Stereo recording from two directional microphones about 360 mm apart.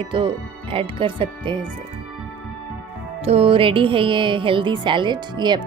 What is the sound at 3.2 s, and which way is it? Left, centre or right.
Speech, centre.